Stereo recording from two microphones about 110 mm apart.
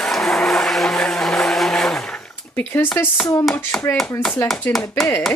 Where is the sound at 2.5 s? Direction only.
20° left (ahead or behind).